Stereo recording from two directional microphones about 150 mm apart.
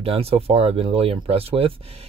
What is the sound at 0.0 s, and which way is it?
Speech, 40° right (ahead or behind).